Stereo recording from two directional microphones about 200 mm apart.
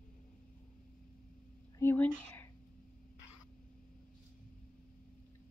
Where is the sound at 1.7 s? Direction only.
10° left (ahead or behind).